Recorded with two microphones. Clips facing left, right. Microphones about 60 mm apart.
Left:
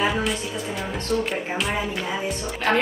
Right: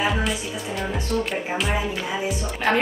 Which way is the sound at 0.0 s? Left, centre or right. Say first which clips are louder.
Even; centre.